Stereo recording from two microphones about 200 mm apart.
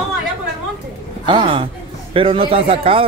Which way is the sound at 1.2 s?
25° right (ahead or behind).